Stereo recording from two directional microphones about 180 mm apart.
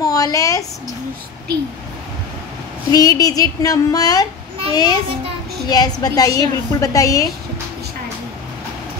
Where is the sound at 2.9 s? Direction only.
20° left (ahead or behind).